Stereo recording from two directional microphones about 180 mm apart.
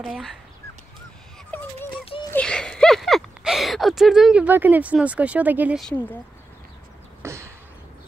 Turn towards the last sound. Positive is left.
turn(degrees=-15)  # may be behind; listen again after turning